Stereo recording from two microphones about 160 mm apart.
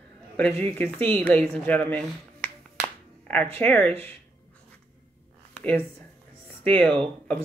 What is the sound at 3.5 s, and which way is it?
Speech, 10° left (ahead or behind).